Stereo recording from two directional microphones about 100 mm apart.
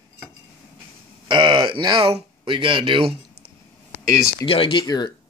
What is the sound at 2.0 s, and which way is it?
Speech, 85° right.